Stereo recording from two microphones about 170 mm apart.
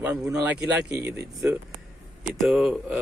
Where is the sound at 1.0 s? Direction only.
15° right (ahead or behind).